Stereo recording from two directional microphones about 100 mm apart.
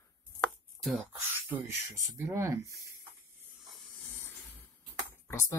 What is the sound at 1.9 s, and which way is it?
Speech, 30° right (ahead or behind).